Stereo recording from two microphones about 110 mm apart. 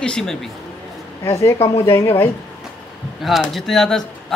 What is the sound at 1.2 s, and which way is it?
A woman's voice, 25° left (ahead or behind).